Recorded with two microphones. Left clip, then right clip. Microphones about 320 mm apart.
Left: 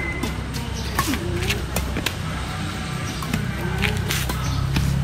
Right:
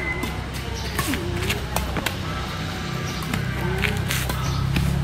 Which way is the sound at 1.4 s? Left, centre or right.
Centre.